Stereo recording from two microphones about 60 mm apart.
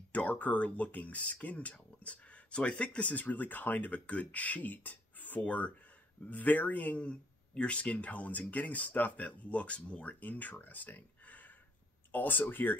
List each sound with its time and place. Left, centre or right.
0.1 s speech: left